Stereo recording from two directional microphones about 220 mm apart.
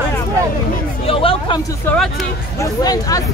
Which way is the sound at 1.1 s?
25° left (ahead or behind).